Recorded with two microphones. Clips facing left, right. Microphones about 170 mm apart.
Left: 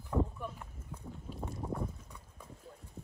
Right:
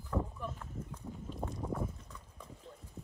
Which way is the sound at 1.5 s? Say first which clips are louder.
Left 1 dB; centre (ahead or behind).